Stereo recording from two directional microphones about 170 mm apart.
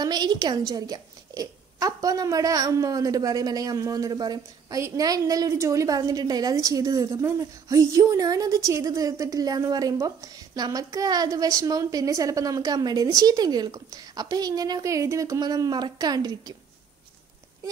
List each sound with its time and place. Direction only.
0.0 s a woman's voice: 25° right (ahead or behind)